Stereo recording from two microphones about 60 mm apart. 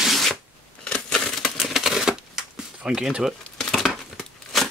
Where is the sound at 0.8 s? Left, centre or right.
Centre.